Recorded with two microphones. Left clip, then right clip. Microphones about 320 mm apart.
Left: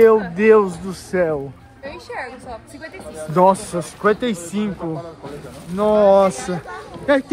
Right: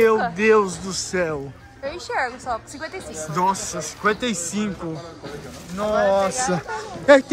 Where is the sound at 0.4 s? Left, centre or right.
Centre.